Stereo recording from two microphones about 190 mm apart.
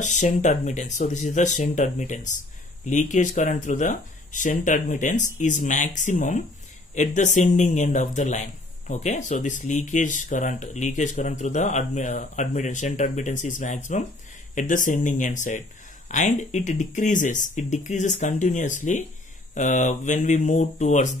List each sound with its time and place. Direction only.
0.0 s speech: 40° left (ahead or behind)